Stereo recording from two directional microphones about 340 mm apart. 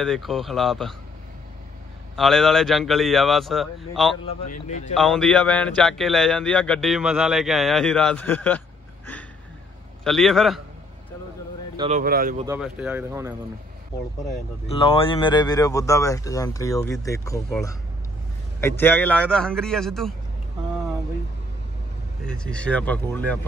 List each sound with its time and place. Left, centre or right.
0.0 s a man's voice: centre
2.1 s a man's voice: centre
4.6 s speech: left
4.9 s a man's voice: centre
11.7 s speech: centre
12.0 s speech: right
12.4 s a man's voice: centre
14.2 s a man's voice: centre
22.2 s a man's voice: centre